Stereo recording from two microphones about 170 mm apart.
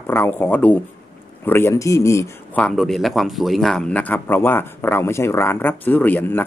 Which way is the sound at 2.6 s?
Centre (ahead or behind).